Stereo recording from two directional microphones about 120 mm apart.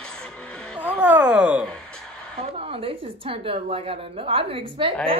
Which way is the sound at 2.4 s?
50° right (ahead or behind).